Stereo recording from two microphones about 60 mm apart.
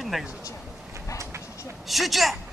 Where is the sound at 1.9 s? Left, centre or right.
Centre.